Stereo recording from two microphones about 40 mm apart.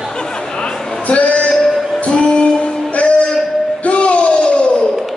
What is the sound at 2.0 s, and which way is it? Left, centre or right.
Music, left.